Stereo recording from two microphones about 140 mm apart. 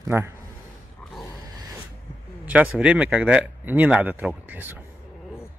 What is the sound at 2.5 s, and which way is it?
A man's voice, 10° right (ahead or behind).